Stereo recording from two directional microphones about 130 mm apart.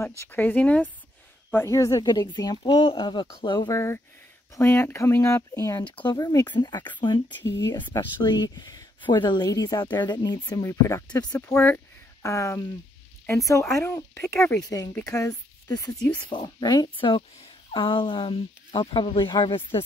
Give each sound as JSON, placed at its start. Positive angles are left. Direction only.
{"t": 0.2, "sound": "speech", "side_deg": 15}
{"t": 3.7, "sound": "speech", "side_deg": 20}